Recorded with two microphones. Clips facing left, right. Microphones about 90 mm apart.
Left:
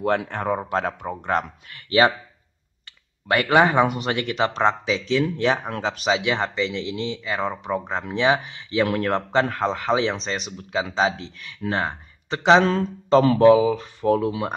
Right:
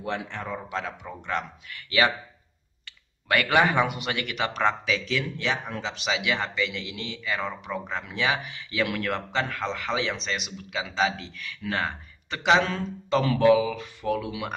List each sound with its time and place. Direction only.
0.0 s speech: 50° left (ahead or behind); by 2.1 s 35° left (ahead or behind)
3.3 s speech: 30° left (ahead or behind); by 6.1 s 45° left (ahead or behind)
6.1 s speech: 30° left (ahead or behind)